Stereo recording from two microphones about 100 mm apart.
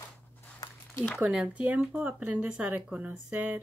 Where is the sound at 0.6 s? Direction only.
40° left (ahead or behind).